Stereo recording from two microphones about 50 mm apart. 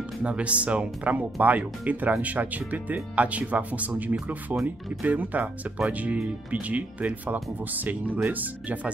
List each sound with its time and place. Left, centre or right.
0.2 s speech: right